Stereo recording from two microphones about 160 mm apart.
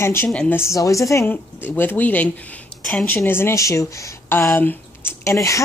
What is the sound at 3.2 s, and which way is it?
A woman's voice, 15° left (ahead or behind).